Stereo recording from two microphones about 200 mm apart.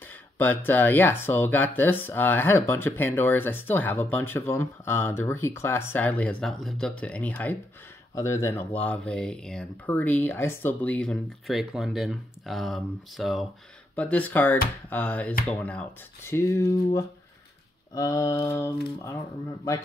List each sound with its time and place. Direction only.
0.0 s speech: 10° left (ahead or behind)